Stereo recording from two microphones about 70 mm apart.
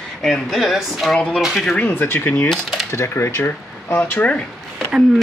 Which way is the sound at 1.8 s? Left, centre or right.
Left.